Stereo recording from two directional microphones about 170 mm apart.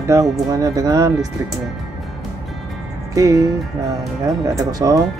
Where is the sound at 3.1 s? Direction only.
20° right (ahead or behind).